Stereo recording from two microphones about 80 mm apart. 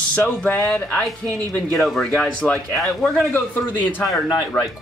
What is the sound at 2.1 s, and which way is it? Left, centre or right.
Speech, centre.